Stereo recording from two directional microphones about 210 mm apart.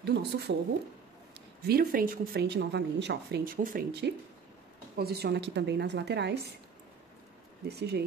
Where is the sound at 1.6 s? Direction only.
45° right (ahead or behind).